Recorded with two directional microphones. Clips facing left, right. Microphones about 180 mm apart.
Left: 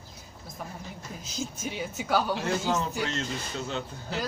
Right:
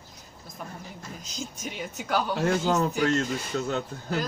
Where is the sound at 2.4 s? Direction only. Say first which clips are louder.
Right 4 dB; 50° right (ahead or behind).